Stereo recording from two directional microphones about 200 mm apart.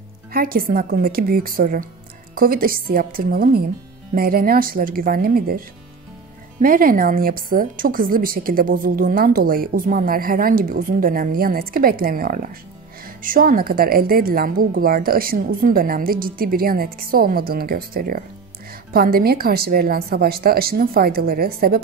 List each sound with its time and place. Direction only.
0.3 s a woman's voice: 45° right (ahead or behind)
6.6 s a woman's voice: 45° right (ahead or behind)